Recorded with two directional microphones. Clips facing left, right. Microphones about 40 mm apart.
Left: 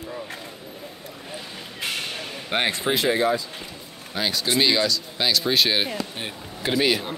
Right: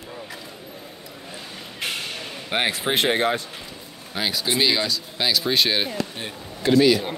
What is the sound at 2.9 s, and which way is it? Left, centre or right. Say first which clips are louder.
Speech: even; right.